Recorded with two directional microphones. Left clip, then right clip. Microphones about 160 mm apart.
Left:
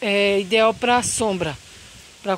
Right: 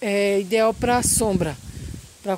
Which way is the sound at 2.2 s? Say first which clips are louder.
Left 2 dB; 20° right (ahead or behind).